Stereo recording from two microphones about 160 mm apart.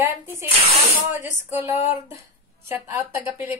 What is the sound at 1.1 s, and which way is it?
Speech, 50° left (ahead or behind).